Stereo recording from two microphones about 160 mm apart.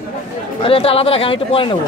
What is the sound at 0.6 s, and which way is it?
Speech, 35° left (ahead or behind).